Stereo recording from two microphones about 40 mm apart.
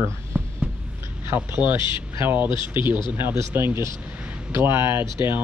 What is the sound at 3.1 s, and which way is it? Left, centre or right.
Speech, right.